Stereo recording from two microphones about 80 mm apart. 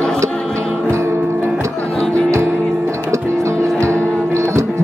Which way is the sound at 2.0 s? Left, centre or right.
Centre.